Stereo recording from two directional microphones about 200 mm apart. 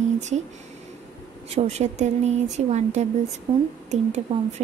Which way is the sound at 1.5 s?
35° right (ahead or behind).